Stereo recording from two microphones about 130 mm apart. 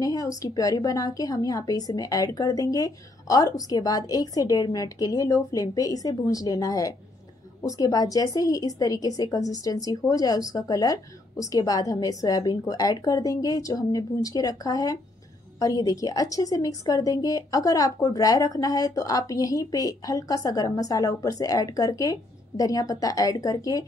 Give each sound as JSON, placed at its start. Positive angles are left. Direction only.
{"t": 0.0, "sound": "a woman's voice", "side_deg": 25}